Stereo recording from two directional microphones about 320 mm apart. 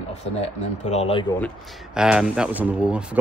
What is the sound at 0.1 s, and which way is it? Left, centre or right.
Speech, left.